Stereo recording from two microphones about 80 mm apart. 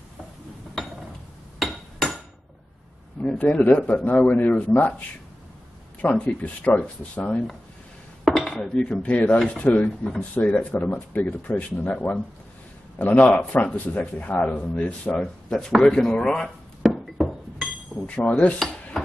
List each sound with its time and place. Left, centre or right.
1.6 s a sound: centre
3.2 s a man's voice: centre
8.3 s dishes: centre
9.5 s a man's voice: centre
16.9 s a sound: centre
17.9 s speech: centre
18.6 s stir: centre